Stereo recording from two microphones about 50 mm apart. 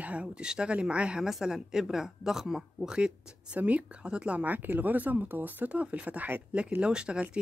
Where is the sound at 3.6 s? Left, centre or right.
Right.